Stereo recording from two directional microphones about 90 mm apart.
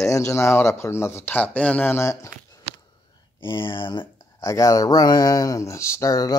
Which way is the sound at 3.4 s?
70° left (ahead or behind).